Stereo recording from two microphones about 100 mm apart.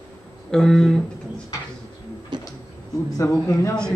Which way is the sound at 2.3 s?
50° right (ahead or behind).